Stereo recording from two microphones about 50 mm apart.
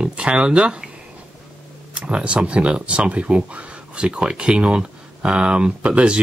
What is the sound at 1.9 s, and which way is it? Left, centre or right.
Speech, right.